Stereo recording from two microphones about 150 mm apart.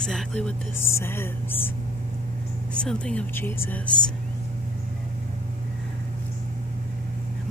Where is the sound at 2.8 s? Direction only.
5° left (ahead or behind).